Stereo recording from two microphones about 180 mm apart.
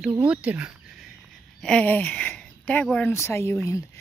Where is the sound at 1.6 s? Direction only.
5° left (ahead or behind).